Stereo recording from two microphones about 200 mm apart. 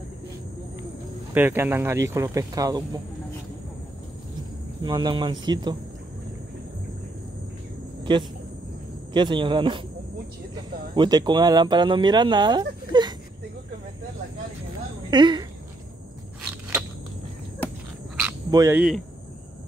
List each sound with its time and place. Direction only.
1.3 s speech: 10° right (ahead or behind)
4.8 s speech: 20° right (ahead or behind)
8.0 s cricket: 25° right (ahead or behind)
9.1 s speech: 25° right (ahead or behind)
15.0 s speech: 20° right (ahead or behind)
18.5 s speech: 15° right (ahead or behind)